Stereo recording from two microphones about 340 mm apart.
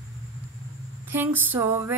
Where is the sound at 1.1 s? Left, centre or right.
Centre.